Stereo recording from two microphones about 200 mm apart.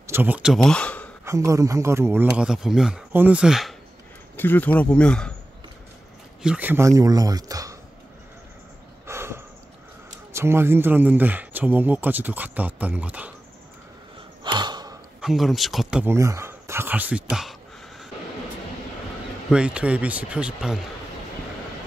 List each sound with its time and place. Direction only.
0.0 s speech: 10° right (ahead or behind); by 1.1 s 5° left (ahead or behind)
1.2 s speech: 15° right (ahead or behind)
4.4 s speech: 10° left (ahead or behind)
6.4 s speech: 5° right (ahead or behind)
9.0 s a sound: 15° right (ahead or behind)
10.3 s speech: 10° right (ahead or behind)
14.4 s a sound: 20° right (ahead or behind)
15.1 s speech: centre (ahead or behind)
19.5 s speech: 5° right (ahead or behind)